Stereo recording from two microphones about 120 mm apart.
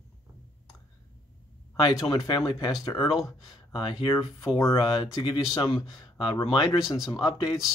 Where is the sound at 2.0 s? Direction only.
30° left (ahead or behind).